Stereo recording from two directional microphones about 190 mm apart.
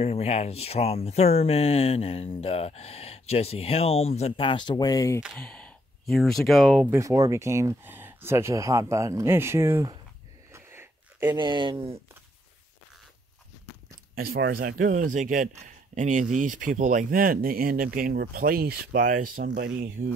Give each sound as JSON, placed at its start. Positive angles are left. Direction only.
{"t": 0.0, "sound": "speech", "side_deg": 35}
{"t": 5.2, "sound": "speech", "side_deg": 0}
{"t": 7.0, "sound": "speech", "side_deg": -15}
{"t": 10.5, "sound": "a sound", "side_deg": -10}
{"t": 11.3, "sound": "speech", "side_deg": -25}
{"t": 14.1, "sound": "speech", "side_deg": -50}